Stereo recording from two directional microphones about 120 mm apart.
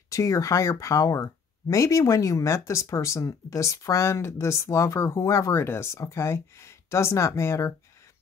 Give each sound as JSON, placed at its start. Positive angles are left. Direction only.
{"t": 0.1, "sound": "speech", "side_deg": 25}